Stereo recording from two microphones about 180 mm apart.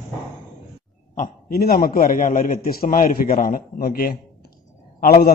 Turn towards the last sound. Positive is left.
turn(degrees=55)  # may be behind; listen again after turning